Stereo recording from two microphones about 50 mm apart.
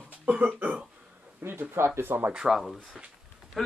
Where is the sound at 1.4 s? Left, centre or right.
Right.